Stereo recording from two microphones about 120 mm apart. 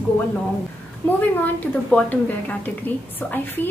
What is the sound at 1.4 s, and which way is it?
A woman's voice, 10° left (ahead or behind).